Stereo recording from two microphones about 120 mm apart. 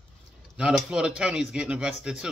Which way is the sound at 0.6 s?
10° right (ahead or behind).